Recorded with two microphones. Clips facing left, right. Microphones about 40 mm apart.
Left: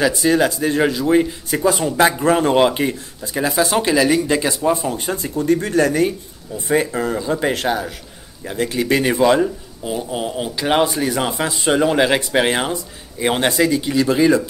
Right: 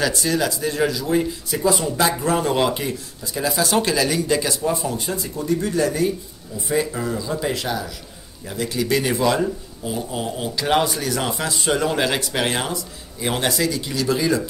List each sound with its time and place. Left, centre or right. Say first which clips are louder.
0.0 s speech: left 5 dB; centre
0.3 s speech: left 6 dB; left
5.0 s speech: left 6 dB; left
8.5 s speech: left 4 dB; left